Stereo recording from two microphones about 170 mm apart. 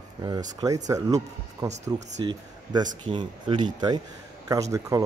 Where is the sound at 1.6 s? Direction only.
40° right (ahead or behind).